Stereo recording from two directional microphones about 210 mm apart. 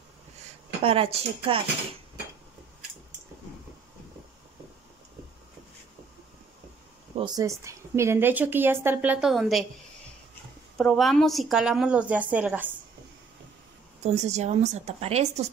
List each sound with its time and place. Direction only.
0.8 s speech: 25° right (ahead or behind)
7.2 s speech: 20° right (ahead or behind); by 9.7 s centre (ahead or behind)
10.8 s a woman's voice: centre (ahead or behind)
14.0 s speech: 35° right (ahead or behind)